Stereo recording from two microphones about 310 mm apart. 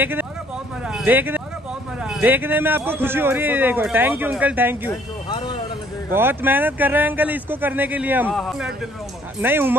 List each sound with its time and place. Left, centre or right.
0.0 s a man's voice: centre
4.8 s music: centre
6.1 s a man's voice: centre